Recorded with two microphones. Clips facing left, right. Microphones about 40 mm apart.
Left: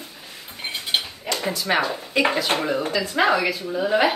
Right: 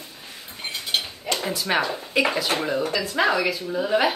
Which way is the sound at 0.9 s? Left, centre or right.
Left.